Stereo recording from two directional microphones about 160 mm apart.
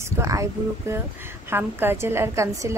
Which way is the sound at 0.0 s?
20° right (ahead or behind).